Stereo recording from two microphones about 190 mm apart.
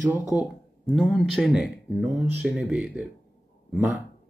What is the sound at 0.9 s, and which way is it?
Speech, centre (ahead or behind).